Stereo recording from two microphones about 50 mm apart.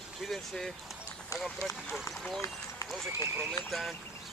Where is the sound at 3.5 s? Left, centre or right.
Centre.